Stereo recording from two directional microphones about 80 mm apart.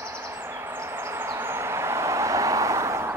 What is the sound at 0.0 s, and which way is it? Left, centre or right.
Train, right.